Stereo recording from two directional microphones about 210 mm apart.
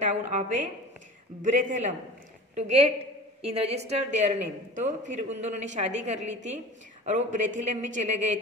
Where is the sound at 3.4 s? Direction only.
30° right (ahead or behind).